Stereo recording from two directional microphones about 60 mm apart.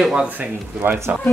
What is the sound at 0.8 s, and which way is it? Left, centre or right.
Speech, right.